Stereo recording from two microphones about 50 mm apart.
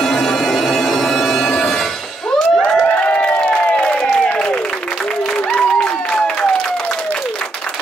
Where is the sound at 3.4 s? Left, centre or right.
Left.